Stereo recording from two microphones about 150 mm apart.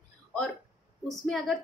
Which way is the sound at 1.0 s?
Centre (ahead or behind).